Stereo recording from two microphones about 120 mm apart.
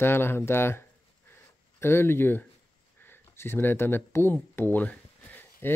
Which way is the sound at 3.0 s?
20° left (ahead or behind).